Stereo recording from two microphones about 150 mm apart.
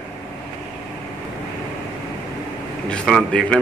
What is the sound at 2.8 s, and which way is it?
Speech, 5° left (ahead or behind).